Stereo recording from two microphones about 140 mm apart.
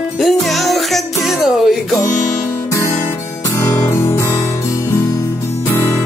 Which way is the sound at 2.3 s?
20° left (ahead or behind).